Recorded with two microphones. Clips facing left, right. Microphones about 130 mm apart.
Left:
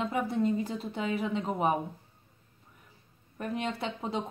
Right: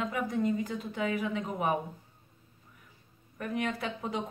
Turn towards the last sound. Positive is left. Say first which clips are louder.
# left 1 dB
turn(degrees=30)  # may be behind; listen again after turning